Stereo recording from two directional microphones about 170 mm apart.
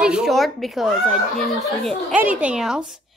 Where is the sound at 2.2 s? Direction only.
10° right (ahead or behind).